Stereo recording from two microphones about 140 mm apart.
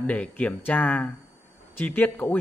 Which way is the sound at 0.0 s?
10° left (ahead or behind).